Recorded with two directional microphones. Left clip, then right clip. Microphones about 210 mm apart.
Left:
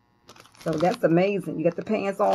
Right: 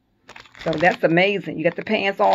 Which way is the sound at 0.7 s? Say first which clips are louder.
Right 4 dB; 10° right (ahead or behind).